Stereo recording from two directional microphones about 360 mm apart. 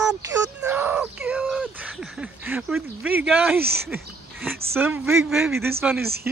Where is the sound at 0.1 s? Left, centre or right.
Centre.